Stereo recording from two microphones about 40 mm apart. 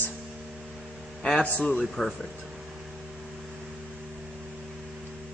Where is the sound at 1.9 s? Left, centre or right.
Centre.